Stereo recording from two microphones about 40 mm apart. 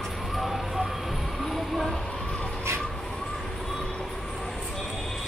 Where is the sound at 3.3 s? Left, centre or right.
Centre.